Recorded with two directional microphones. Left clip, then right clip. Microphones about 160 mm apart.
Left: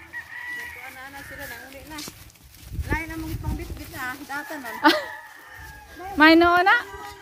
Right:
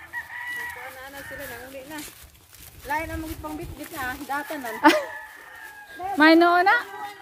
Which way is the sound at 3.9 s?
70° right (ahead or behind).